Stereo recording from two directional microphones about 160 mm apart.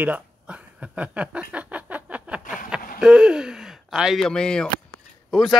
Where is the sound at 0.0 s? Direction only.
10° right (ahead or behind).